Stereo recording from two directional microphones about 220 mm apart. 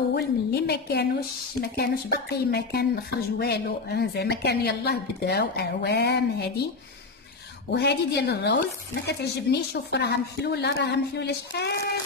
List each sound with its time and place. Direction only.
0.1 s speech: 50° left (ahead or behind)
7.7 s speech: 50° left (ahead or behind)